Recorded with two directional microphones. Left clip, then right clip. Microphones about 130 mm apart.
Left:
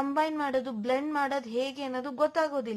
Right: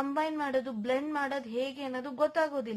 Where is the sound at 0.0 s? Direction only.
35° left (ahead or behind).